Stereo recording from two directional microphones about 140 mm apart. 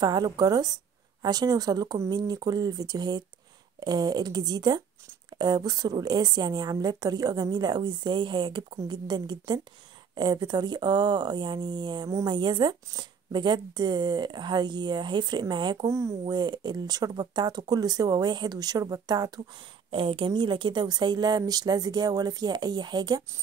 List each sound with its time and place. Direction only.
0.0 s a woman's voice: 30° right (ahead or behind)
19.9 s a woman's voice: 40° right (ahead or behind)